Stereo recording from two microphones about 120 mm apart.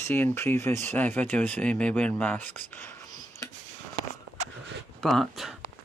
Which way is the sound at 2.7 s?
20° left (ahead or behind).